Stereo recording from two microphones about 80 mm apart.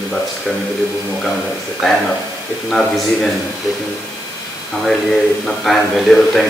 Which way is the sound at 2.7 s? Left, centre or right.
Centre.